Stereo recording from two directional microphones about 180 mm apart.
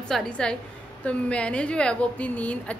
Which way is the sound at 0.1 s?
5° left (ahead or behind).